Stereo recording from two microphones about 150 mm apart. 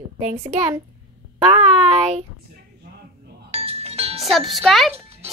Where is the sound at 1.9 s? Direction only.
40° right (ahead or behind).